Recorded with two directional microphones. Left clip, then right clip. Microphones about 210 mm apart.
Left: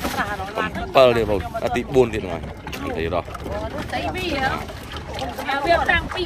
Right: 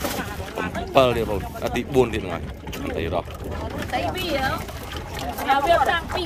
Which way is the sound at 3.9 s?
25° right (ahead or behind).